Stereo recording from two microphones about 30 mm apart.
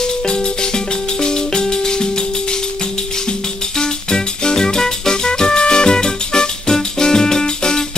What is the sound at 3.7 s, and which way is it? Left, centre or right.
Music, left.